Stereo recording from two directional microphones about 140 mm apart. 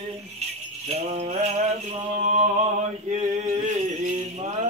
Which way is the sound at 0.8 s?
50° right (ahead or behind).